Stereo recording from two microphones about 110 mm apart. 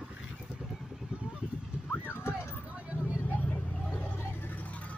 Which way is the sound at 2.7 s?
10° right (ahead or behind).